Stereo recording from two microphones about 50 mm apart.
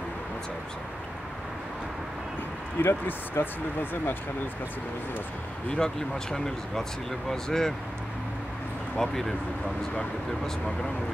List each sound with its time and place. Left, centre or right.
2.8 s speech: left
5.7 s speech: centre
8.9 s speech: centre